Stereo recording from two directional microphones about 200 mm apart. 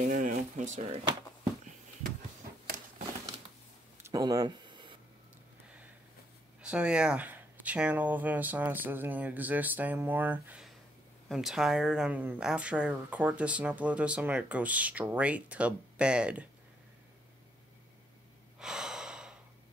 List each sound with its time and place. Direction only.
0.1 s speech: 40° right (ahead or behind)
4.0 s a sound: 20° right (ahead or behind)
6.6 s speech: 5° right (ahead or behind)
18.6 s breathing: 5° right (ahead or behind)